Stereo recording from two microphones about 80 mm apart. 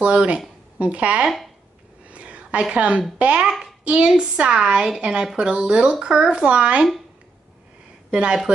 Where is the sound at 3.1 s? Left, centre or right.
Centre.